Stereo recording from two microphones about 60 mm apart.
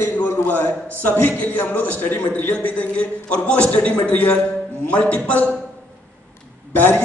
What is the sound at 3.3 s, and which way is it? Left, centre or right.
A man's voice, left.